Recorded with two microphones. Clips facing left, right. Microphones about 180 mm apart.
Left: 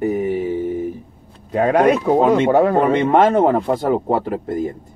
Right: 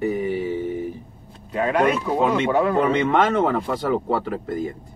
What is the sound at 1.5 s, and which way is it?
A man's voice, 45° left (ahead or behind).